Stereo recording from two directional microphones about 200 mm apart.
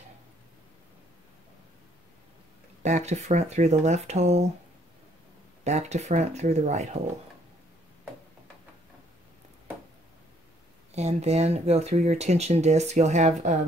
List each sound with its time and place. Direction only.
2.8 s speech: 35° right (ahead or behind)
5.6 s speech: 35° right (ahead or behind)
11.0 s speech: 35° right (ahead or behind)